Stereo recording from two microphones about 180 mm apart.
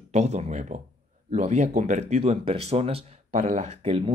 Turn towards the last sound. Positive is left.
turn(degrees=-30)  # may be behind; listen again after turning